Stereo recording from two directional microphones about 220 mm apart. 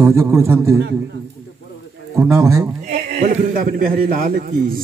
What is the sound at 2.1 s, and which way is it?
Speech, 15° right (ahead or behind).